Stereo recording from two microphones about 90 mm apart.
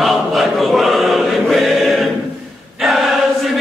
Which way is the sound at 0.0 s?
Centre (ahead or behind).